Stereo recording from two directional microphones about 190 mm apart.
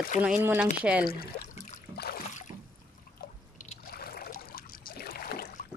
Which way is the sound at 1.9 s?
55° left (ahead or behind).